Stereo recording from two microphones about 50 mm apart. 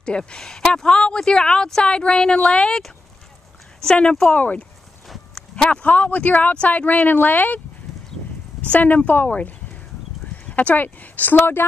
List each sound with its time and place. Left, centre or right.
0.0 s a woman's voice: centre
3.8 s speech: centre
4.4 s speech: left
5.3 s a sound: centre
5.9 s speech: left
7.9 s a sound: centre
8.5 s speech: left